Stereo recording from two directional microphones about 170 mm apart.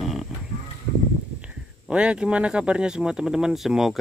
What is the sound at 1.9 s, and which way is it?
Speech, 5° right (ahead or behind).